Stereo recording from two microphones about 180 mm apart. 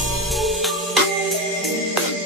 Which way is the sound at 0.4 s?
Centre (ahead or behind).